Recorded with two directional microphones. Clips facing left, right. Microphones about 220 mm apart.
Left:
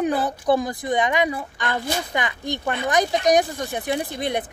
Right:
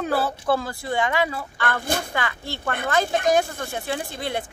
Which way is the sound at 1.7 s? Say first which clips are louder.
Even; 55° right (ahead or behind).